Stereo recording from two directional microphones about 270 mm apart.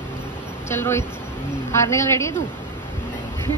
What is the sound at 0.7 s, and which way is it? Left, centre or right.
A woman's voice, centre.